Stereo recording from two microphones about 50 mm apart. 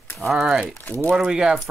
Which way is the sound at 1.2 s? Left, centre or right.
Centre.